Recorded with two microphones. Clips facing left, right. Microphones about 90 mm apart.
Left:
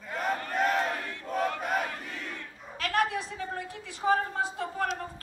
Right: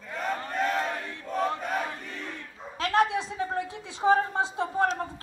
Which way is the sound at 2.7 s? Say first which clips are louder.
Right 4 dB; 25° right (ahead or behind).